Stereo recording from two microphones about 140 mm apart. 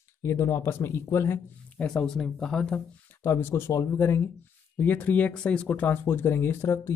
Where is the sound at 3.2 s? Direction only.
15° left (ahead or behind).